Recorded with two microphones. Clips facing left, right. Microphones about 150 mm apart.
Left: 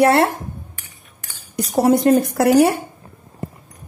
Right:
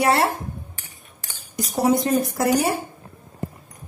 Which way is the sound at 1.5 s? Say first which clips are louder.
Left 4 dB; 60° left (ahead or behind).